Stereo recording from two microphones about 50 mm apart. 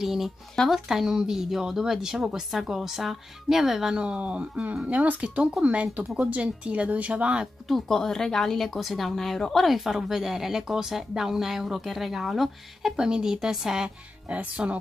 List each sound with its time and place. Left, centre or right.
0.0 s speech: centre; by 7.4 s right
7.6 s speech: centre
12.9 s speech: centre
13.8 s speech: right